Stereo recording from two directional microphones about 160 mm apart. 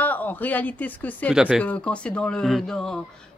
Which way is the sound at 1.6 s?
10° left (ahead or behind).